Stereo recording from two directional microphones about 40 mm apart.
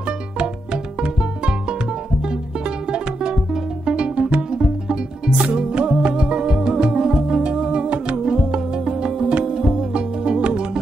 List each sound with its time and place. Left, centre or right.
1.0 s music: right